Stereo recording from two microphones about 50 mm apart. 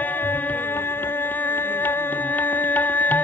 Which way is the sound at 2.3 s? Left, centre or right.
Left.